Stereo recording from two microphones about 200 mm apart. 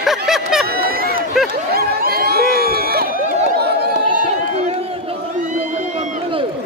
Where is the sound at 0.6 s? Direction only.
50° right (ahead or behind).